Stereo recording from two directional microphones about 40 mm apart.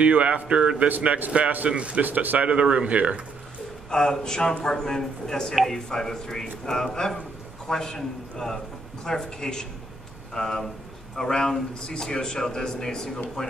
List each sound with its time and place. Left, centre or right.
0.0 s a man's voice: right
2.0 s speech: right
2.4 s a man's voice: right
3.9 s a man's voice: centre